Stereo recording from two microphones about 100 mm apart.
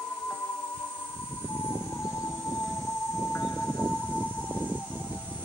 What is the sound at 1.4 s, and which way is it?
Siren, 20° left (ahead or behind).